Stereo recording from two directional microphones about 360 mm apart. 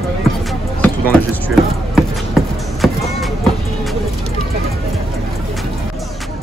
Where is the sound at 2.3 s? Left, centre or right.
Centre.